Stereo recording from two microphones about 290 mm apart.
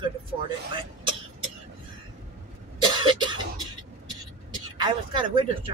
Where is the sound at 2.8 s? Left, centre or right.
Centre.